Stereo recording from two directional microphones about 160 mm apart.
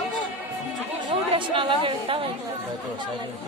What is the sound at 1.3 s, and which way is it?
Speech, 30° right (ahead or behind).